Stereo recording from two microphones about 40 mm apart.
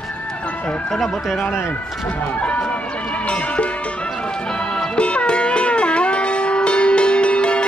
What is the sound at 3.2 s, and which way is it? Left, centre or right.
Music, left.